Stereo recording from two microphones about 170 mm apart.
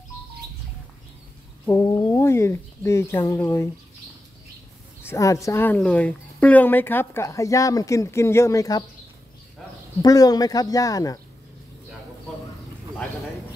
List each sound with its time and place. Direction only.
1.7 s speech: 20° left (ahead or behind)
5.0 s speech: 20° left (ahead or behind)
10.0 s speech: 20° left (ahead or behind)